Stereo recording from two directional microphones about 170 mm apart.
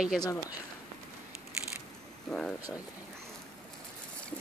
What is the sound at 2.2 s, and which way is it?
Speech, 5° left (ahead or behind).